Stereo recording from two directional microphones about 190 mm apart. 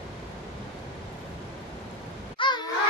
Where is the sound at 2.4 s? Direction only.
25° left (ahead or behind).